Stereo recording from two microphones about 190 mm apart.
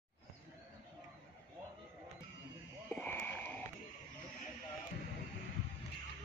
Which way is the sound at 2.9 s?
10° left (ahead or behind).